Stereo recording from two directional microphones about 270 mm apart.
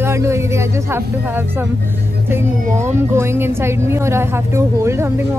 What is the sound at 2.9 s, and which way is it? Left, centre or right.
A woman's voice, centre.